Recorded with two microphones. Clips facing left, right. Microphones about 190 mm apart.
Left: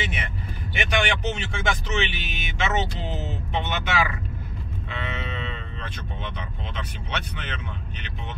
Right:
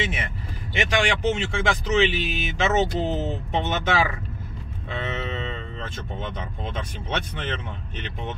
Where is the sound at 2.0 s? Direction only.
35° right (ahead or behind).